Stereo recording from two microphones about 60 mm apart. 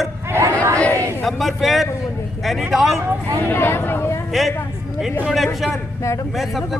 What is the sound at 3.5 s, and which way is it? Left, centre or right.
Speech, left.